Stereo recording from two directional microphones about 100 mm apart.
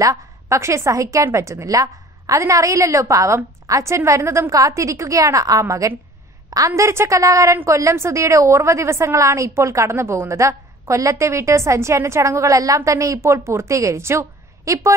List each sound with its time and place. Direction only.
0.0 s a woman's voice: 35° right (ahead or behind)